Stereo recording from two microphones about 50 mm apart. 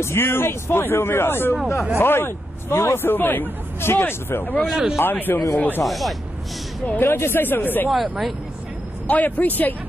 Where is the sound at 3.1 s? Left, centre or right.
Left.